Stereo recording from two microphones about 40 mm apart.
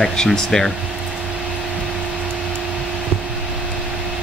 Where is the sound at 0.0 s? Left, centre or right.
Centre.